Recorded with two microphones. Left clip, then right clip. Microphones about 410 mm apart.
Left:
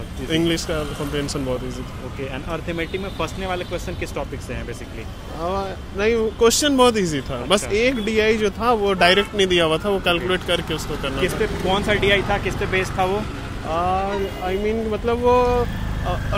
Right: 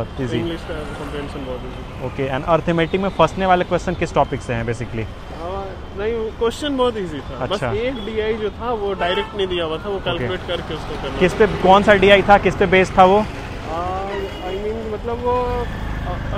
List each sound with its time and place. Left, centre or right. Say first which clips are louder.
2.3 s speech: right 11 dB; right
5.5 s speech: left 3 dB; left
11.1 s speech: right 8 dB; right
15.0 s speech: left 3 dB; left